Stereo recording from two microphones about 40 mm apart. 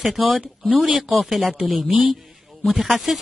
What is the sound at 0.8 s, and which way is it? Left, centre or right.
Speech, centre.